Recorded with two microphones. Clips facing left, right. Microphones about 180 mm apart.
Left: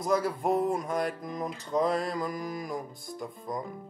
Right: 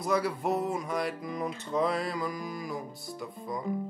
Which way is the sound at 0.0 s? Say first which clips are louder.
Left 1 dB; 45° left (ahead or behind).